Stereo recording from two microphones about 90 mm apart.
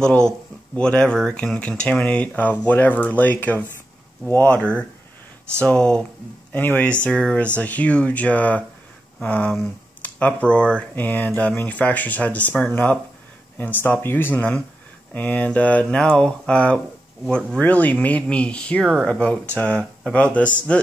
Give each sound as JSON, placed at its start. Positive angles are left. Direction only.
{"t": 0.0, "sound": "speech", "side_deg": 10}